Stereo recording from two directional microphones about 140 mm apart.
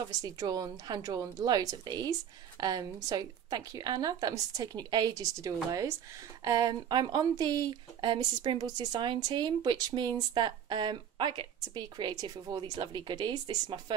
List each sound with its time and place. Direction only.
0.2 s speech: 25° right (ahead or behind)